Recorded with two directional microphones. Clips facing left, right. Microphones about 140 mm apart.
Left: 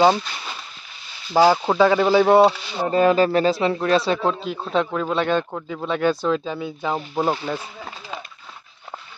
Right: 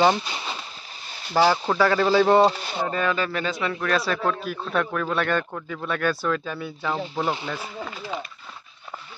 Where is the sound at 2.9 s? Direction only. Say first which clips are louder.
Left 10 dB; 35° left (ahead or behind); by 7.3 s 20° left (ahead or behind).